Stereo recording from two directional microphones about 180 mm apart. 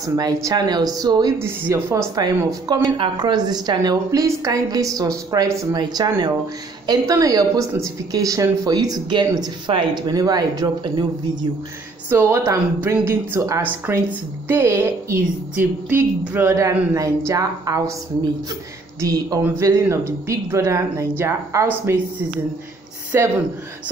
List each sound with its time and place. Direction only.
0.0 s speech: 20° right (ahead or behind)
12.1 s a woman's voice: 15° right (ahead or behind)
23.1 s a woman's voice: 15° right (ahead or behind)